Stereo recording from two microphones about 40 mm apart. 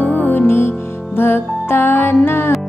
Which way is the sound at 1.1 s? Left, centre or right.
Left.